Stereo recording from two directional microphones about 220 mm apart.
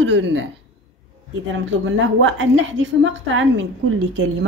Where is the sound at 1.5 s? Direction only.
60° right (ahead or behind).